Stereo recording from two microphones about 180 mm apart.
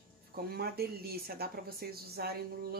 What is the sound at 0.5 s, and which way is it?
Speech, 60° right (ahead or behind).